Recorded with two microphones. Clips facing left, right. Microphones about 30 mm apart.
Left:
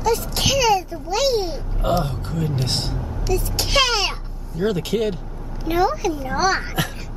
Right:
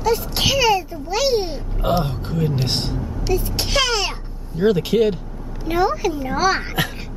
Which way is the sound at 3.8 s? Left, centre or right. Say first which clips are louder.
Left 1 dB; centre.